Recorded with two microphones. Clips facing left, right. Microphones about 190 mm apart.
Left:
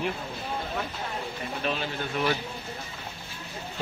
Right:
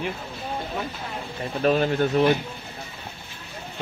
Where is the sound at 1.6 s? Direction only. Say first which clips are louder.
Right 12 dB; 45° right (ahead or behind).